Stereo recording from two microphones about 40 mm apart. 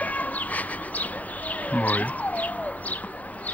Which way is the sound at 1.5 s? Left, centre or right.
Left.